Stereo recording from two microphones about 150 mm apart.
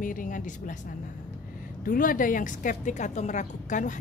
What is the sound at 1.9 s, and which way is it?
A woman's voice, 65° left (ahead or behind).